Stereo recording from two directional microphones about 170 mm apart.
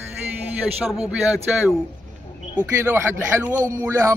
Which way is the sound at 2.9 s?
15° right (ahead or behind).